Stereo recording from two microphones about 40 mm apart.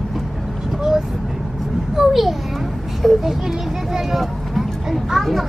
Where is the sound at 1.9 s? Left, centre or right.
Centre.